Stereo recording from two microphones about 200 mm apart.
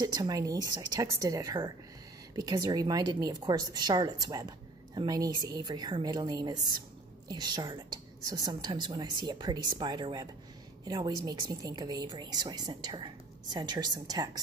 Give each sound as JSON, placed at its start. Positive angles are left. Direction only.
{"t": 0.0, "sound": "a woman's voice", "side_deg": -20}